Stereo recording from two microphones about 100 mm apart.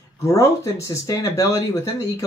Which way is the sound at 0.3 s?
30° left (ahead or behind).